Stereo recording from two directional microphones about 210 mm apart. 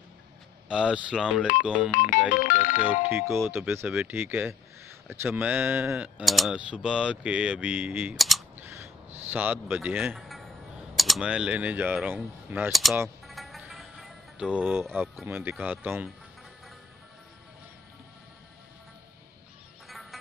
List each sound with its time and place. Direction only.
0.7 s speech: 5° right (ahead or behind)
1.9 s music: 40° left (ahead or behind)
2.8 s speech: 10° right (ahead or behind)
8.8 s music: 10° right (ahead or behind)
11.0 s speech: centre (ahead or behind)
13.3 s music: centre (ahead or behind)
15.2 s speech: 10° right (ahead or behind)
19.9 s a sound: centre (ahead or behind)